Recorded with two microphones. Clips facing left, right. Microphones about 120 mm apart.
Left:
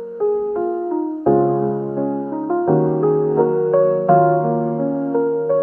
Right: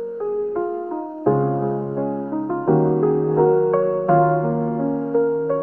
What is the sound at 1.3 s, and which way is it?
Music, 30° left (ahead or behind).